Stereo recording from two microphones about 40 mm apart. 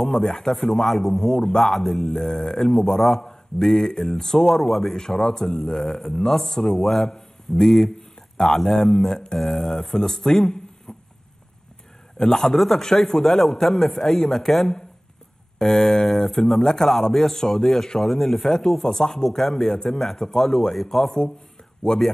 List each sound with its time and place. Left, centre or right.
0.0 s a man's voice: centre
4.6 s a man's voice: centre
4.9 s a man's voice: centre
10.9 s a sound: centre
12.2 s a man's voice: centre